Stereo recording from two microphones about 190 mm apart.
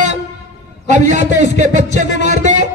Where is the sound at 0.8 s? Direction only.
40° right (ahead or behind).